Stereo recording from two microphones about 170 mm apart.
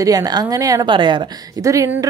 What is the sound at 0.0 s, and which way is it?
A woman's voice, 20° right (ahead or behind).